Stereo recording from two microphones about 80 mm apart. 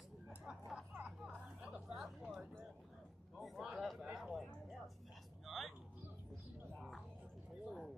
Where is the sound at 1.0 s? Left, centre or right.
Centre.